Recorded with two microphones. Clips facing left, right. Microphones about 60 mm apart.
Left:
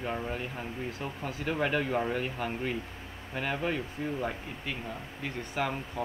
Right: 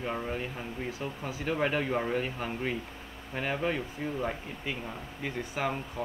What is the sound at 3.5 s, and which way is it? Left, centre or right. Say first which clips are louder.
Speech: right 1 dB; centre.